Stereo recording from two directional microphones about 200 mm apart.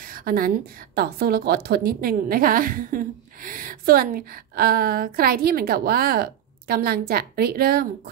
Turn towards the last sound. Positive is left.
turn(degrees=-50)  # may be behind; listen again after turning